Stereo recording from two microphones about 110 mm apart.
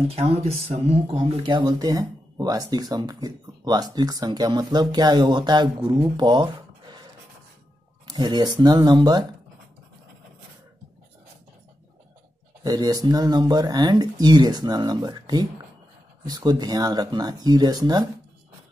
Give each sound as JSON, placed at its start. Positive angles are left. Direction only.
{"t": 0.1, "sound": "speech", "side_deg": -65}
{"t": 1.5, "sound": "speech", "side_deg": -40}
{"t": 8.1, "sound": "speech", "side_deg": -40}
{"t": 12.6, "sound": "speech", "side_deg": -35}